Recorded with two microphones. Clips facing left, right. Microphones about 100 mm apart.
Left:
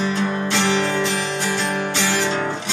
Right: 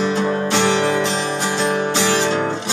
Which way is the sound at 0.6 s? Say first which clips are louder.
Right 2 dB; 20° right (ahead or behind).